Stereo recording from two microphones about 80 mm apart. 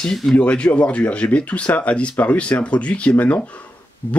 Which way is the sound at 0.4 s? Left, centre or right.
Centre.